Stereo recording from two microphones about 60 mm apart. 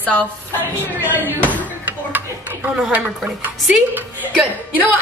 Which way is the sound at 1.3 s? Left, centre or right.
Right.